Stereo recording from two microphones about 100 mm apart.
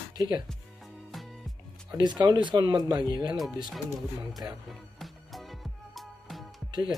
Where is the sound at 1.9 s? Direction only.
45° right (ahead or behind).